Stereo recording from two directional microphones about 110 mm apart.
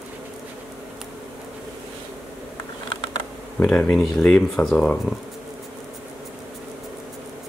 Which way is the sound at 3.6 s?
10° left (ahead or behind).